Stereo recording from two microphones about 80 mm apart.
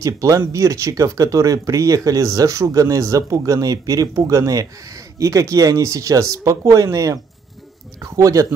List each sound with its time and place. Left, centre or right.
0.0 s speech: right